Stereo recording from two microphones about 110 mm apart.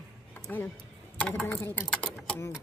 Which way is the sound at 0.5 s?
15° left (ahead or behind).